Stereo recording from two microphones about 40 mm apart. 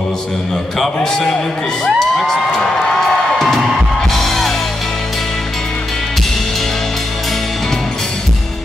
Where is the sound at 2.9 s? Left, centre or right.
Centre.